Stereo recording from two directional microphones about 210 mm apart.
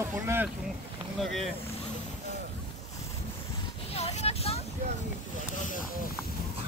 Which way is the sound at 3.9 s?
30° left (ahead or behind).